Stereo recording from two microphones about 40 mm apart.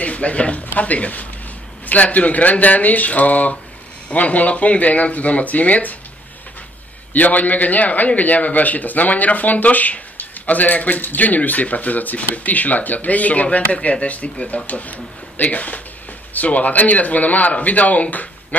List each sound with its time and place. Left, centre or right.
0.0 s speech: left
7.2 s a man's voice: left